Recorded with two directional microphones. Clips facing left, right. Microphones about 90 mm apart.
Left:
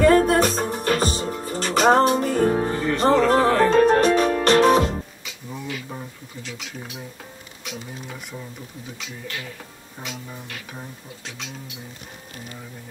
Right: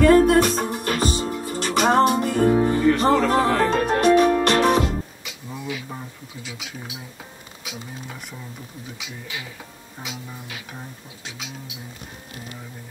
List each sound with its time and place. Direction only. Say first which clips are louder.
0.0 s music: right 1 dB; 35° left (ahead or behind)
4.1 s music: right 3 dB; 35° right (ahead or behind)
4.5 s music: left 3 dB; 35° left (ahead or behind)
5.2 s a sound: even; 5° right (ahead or behind)
7.6 s speech: left 1 dB; 5° right (ahead or behind)